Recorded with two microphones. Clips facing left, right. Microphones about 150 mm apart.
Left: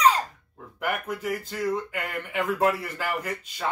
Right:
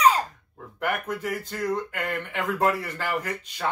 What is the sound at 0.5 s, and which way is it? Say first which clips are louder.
Speech: right 1 dB; 5° left (ahead or behind).